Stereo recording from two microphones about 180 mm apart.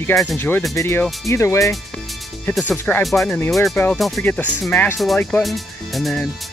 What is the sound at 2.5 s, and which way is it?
Speech, 5° left (ahead or behind).